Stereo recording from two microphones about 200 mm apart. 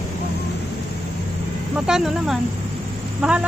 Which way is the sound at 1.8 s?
Centre (ahead or behind).